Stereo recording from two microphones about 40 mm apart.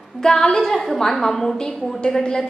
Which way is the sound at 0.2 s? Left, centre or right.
Centre.